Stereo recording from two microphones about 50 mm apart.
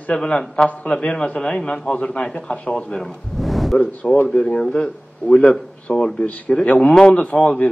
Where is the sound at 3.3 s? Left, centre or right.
Centre.